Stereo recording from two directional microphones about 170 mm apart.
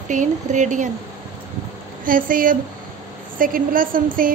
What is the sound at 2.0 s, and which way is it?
A woman's voice, 55° right (ahead or behind).